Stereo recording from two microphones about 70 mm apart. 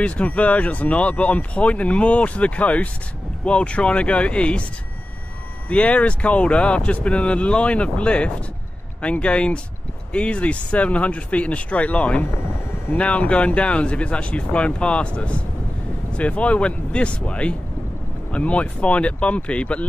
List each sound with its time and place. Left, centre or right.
0.0 s speech: centre
5.7 s speech: centre